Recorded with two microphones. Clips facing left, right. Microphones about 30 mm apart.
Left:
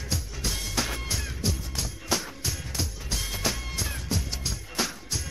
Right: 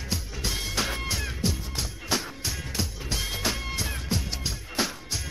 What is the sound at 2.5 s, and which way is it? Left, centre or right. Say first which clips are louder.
Music: right 1 dB; centre.